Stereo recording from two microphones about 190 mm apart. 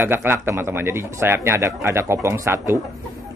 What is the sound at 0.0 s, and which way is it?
Speech, 10° right (ahead or behind).